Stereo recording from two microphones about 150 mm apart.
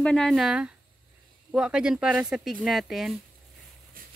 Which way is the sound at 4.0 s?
70° right (ahead or behind).